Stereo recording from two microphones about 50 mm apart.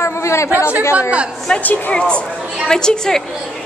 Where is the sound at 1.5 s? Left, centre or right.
Centre.